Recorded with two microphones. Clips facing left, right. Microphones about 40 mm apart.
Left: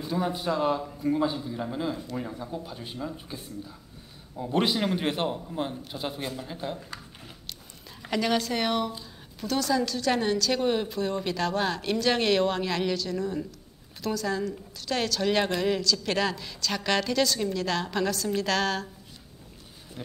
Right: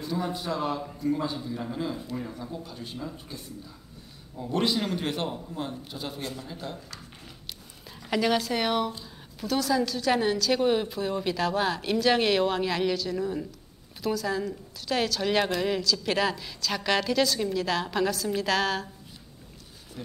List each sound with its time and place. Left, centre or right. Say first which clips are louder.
0.0 s a man's voice: left 2 dB; centre
8.1 s a woman's voice: right 1 dB; centre